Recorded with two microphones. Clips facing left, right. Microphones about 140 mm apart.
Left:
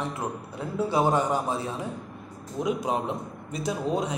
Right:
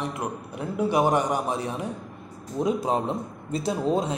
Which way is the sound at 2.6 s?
35° right (ahead or behind).